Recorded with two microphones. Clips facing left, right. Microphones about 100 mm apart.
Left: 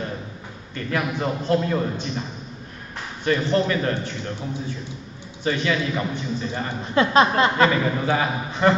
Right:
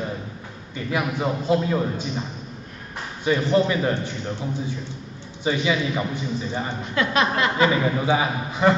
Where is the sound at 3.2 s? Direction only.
10° right (ahead or behind).